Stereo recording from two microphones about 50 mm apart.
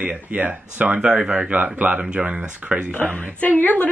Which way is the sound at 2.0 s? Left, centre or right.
Centre.